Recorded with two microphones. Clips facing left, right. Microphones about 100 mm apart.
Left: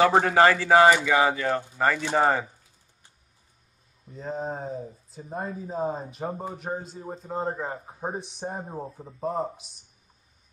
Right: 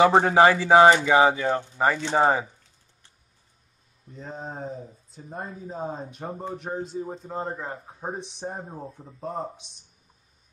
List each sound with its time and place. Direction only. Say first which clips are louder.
0.0 s speech: right 2 dB; 20° right (ahead or behind)
4.2 s a man's voice: left 4 dB; centre (ahead or behind)